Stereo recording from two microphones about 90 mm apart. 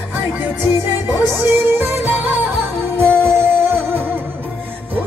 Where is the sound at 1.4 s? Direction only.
25° right (ahead or behind).